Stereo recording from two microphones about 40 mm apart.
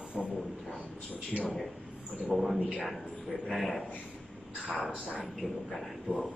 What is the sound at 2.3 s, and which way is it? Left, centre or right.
Speech, centre.